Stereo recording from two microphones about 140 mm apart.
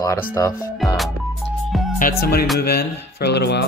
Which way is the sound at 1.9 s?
85° left.